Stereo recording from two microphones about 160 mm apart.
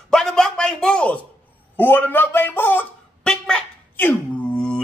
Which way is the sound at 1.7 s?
10° left (ahead or behind).